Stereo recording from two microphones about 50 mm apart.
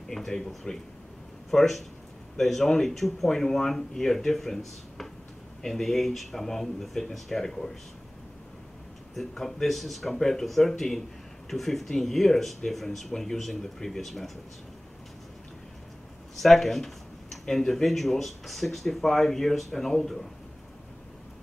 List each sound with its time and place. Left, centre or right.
0.1 s speech: centre
9.1 s speech: centre
16.3 s speech: centre